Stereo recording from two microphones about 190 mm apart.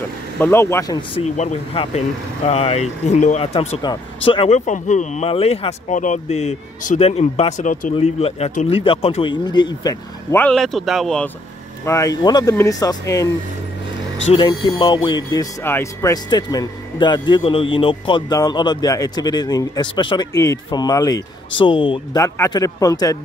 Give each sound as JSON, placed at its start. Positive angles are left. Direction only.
{"t": 0.4, "sound": "speech", "side_deg": 15}
{"t": 1.1, "sound": "speech", "side_deg": 35}
{"t": 7.9, "sound": "speech", "side_deg": 30}
{"t": 10.4, "sound": "speech", "side_deg": 0}
{"t": 11.8, "sound": "speech", "side_deg": 15}
{"t": 14.2, "sound": "speech", "side_deg": 30}